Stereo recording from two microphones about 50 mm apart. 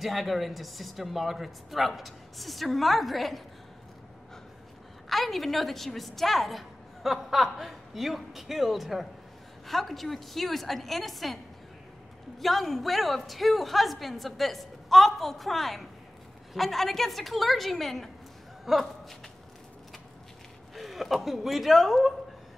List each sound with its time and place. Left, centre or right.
0.0 s a woman's voice: centre
5.1 s a woman's voice: centre
12.4 s a woman's voice: centre
20.7 s a woman's voice: centre